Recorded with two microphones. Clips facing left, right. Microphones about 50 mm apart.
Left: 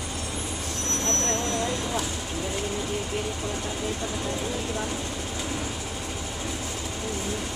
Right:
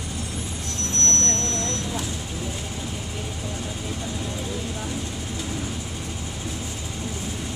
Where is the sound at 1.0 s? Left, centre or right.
Centre.